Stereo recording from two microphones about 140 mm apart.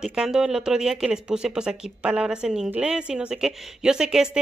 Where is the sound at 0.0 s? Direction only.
5° right (ahead or behind).